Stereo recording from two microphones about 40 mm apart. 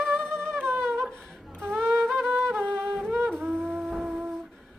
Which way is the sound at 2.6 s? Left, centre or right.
Left.